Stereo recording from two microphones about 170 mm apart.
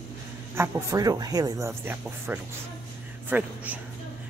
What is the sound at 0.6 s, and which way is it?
Speech, 15° right (ahead or behind).